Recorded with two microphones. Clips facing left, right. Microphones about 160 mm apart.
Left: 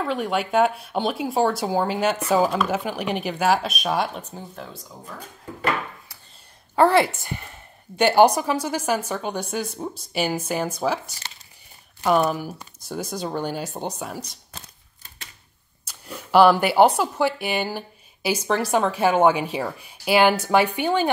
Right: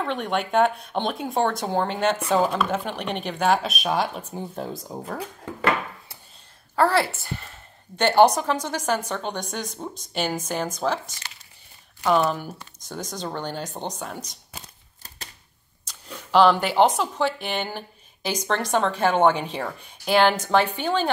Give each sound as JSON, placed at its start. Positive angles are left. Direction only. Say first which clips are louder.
{"t": 0.0, "sound": "speech", "louder": "left 2 dB", "side_deg": 5}
{"t": 5.0, "sound": "speech", "louder": "right 5 dB", "side_deg": -75}
{"t": 6.7, "sound": "a woman's voice", "louder": "left 4 dB", "side_deg": 20}
{"t": 15.8, "sound": "speech", "louder": "left 3 dB", "side_deg": 10}